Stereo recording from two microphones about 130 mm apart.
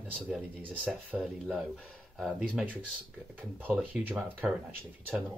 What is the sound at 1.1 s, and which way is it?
Speech, 5° right (ahead or behind).